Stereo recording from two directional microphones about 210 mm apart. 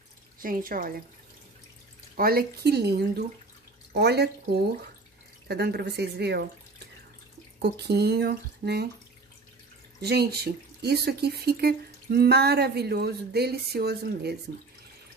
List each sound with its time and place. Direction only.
0.4 s speech: 40° right (ahead or behind)
2.1 s speech: 45° right (ahead or behind)
7.6 s speech: 50° right (ahead or behind)
9.9 s speech: 50° right (ahead or behind)